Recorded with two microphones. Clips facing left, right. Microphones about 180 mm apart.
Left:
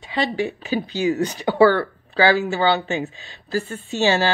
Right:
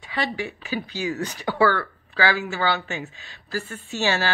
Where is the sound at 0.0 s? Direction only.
25° left (ahead or behind).